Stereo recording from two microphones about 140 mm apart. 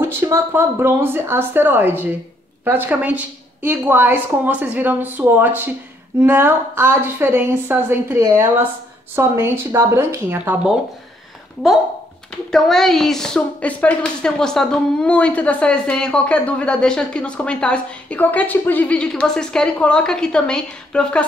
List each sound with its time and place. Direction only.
0.2 s a woman's voice: 15° right (ahead or behind)
12.4 s a woman's voice: 5° left (ahead or behind)